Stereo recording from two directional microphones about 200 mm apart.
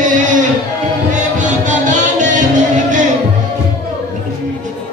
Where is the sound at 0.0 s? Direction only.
40° right (ahead or behind).